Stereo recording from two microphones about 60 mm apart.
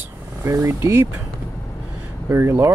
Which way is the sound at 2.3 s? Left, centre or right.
Right.